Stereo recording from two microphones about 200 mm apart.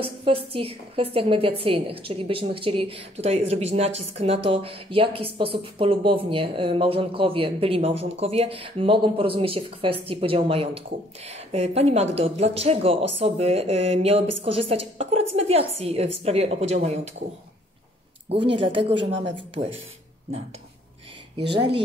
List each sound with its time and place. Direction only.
0.0 s speech: 30° right (ahead or behind)
18.3 s speech: 25° right (ahead or behind)